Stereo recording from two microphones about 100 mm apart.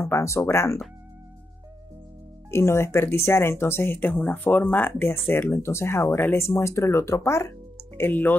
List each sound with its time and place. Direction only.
0.0 s speech: 30° left (ahead or behind)
2.5 s speech: 25° left (ahead or behind)